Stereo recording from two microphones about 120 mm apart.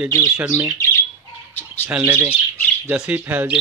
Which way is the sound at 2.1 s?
10° right (ahead or behind).